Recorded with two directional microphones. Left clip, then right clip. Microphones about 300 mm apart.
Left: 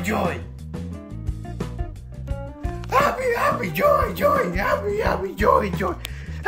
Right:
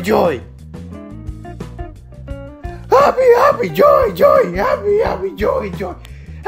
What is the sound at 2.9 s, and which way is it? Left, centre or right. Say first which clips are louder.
Speech: right 10 dB; centre.